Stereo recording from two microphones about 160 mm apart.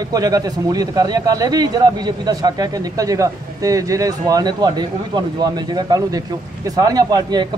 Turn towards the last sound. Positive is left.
turn(degrees=-25)  # may be behind; listen again after turning